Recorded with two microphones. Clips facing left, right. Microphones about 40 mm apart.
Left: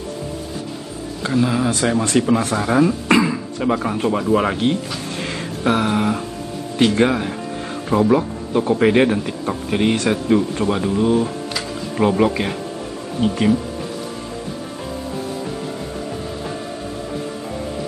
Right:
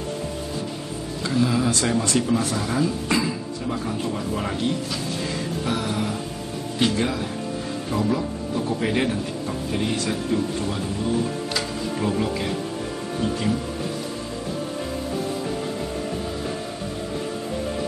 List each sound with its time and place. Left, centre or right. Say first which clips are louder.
1.2 s speech: left 3 dB; left
2.0 s speech: left 5 dB; left
5.2 s a sound: left 4 dB; left
6.8 s speech: left 7 dB; left